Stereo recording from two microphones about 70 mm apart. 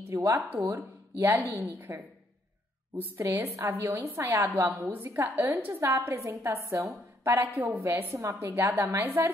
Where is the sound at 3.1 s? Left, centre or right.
Right.